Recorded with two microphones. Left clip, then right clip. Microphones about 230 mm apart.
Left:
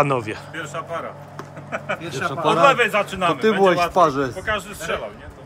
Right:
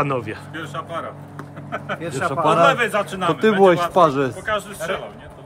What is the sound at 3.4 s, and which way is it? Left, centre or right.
Speech, right.